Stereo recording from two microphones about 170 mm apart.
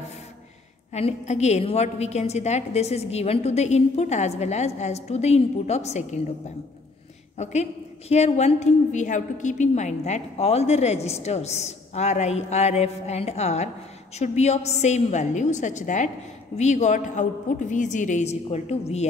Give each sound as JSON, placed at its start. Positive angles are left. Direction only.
{"t": 0.9, "sound": "a woman's voice", "side_deg": 40}
{"t": 7.4, "sound": "a woman's voice", "side_deg": 40}